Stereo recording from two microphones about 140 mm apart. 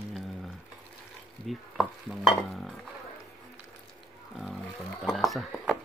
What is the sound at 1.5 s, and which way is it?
Stir, centre (ahead or behind).